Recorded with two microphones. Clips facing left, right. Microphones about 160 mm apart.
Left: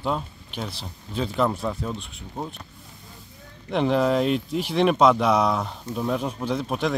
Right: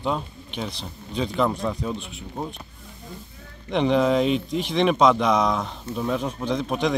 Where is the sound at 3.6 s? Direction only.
5° left (ahead or behind).